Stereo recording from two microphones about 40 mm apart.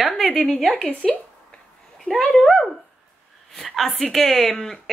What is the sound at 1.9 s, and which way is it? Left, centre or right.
A woman's voice, centre.